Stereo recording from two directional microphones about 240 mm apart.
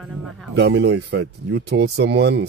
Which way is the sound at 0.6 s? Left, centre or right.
Right.